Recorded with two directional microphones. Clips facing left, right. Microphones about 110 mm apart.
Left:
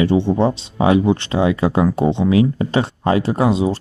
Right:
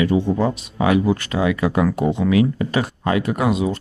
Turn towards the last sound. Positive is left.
turn(degrees=30)  # may be behind; listen again after turning